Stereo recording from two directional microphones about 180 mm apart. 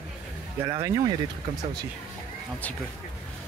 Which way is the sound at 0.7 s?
20° right (ahead or behind).